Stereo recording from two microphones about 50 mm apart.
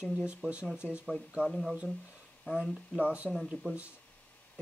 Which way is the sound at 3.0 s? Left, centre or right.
Right.